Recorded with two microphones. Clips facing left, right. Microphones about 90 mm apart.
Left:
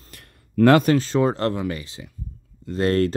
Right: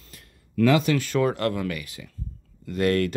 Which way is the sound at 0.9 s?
25° left (ahead or behind).